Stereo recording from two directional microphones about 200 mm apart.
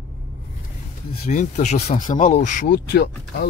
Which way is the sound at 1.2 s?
40° left (ahead or behind).